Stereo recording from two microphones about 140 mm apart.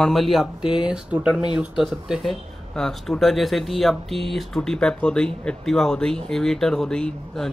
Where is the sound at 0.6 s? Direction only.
35° left (ahead or behind).